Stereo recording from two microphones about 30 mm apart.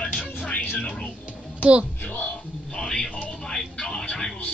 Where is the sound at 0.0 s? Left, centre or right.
Left.